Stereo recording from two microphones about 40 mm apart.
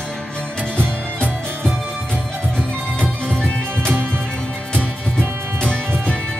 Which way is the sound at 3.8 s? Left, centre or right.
Right.